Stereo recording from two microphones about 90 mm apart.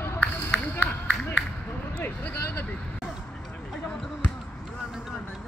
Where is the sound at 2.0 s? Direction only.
15° left (ahead or behind).